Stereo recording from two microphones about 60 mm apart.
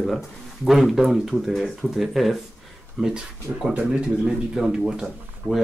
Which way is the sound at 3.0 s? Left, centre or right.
Centre.